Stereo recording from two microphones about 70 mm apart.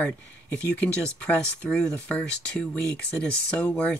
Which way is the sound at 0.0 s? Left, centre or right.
Left.